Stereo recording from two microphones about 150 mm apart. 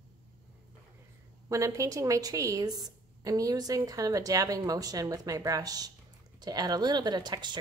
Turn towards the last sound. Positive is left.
turn(degrees=-30)  # may be behind; listen again after turning